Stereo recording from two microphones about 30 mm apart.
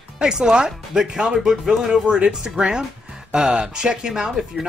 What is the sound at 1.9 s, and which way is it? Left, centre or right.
Speech, right.